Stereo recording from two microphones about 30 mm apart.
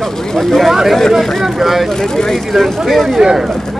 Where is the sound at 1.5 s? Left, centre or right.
Centre.